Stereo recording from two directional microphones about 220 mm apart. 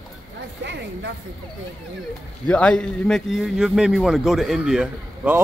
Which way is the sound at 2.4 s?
5° left (ahead or behind).